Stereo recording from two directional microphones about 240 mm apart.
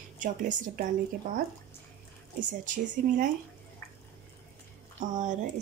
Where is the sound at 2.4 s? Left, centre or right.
Right.